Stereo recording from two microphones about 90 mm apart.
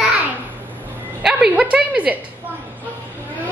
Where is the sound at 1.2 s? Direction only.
5° right (ahead or behind).